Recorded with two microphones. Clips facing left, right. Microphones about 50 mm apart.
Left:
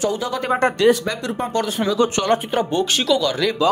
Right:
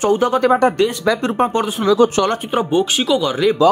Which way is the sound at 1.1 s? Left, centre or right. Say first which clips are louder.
Right 8 dB; right.